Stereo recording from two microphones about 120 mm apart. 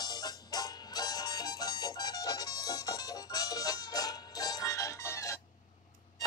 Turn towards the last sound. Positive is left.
turn(degrees=25)  # may be behind; listen again after turning